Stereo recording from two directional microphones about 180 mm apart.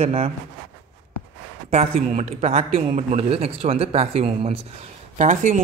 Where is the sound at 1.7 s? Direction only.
35° right (ahead or behind).